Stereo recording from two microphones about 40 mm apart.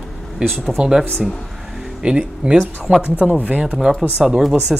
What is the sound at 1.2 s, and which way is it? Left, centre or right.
Speech, centre.